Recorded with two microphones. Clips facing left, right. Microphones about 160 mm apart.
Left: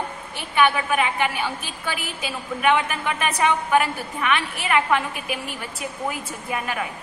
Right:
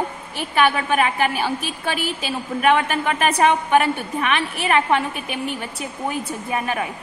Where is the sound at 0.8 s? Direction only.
35° right (ahead or behind).